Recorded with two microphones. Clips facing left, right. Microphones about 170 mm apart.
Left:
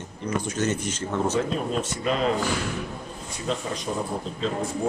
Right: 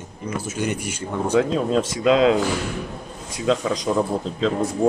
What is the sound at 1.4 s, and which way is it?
Speech, 90° right.